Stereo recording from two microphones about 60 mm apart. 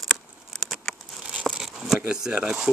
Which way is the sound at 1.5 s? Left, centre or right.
Centre.